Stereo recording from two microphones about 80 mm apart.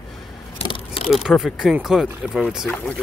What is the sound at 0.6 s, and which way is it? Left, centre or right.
Vehicle, left.